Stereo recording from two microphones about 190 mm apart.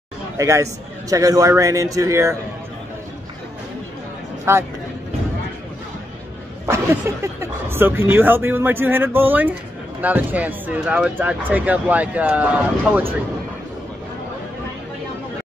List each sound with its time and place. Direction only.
0.4 s speech: 15° right (ahead or behind)
4.5 s speech: 15° right (ahead or behind)
7.3 s speech: 10° right (ahead or behind)